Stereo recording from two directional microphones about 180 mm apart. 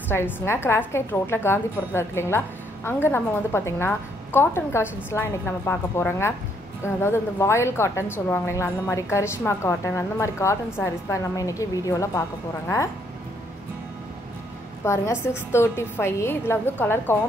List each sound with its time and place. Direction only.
0.1 s a woman's voice: 15° left (ahead or behind)
14.9 s a woman's voice: 15° left (ahead or behind)